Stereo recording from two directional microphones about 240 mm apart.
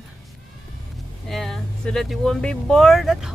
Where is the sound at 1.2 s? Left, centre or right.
Centre.